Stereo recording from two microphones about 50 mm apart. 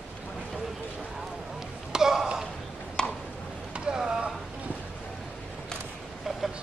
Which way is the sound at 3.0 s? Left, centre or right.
Centre.